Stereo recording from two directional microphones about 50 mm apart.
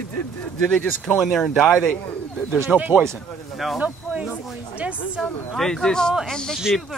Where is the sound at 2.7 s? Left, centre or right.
Centre.